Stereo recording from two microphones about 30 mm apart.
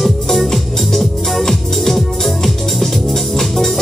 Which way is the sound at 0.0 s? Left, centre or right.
Centre.